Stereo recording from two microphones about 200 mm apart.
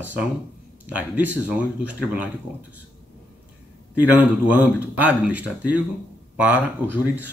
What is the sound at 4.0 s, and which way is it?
Speech, 10° right (ahead or behind).